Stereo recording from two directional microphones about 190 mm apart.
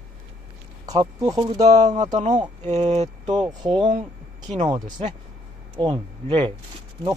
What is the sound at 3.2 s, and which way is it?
Speech, 20° right (ahead or behind).